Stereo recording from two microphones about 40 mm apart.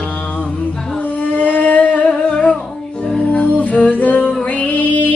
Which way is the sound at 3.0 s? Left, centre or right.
Left.